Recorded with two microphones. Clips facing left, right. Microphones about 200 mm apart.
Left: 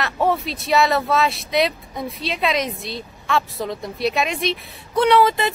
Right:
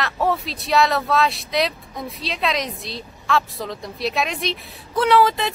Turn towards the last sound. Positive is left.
turn(degrees=0)  # may be behind; listen again after turning